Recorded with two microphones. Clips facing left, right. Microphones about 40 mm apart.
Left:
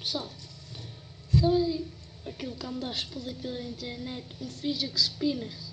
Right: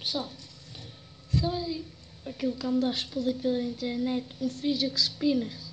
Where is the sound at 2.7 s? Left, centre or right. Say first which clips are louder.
Right 8 dB; centre.